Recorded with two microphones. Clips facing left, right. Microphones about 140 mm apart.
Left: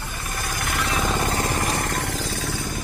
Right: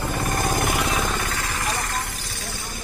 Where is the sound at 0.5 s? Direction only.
20° right (ahead or behind).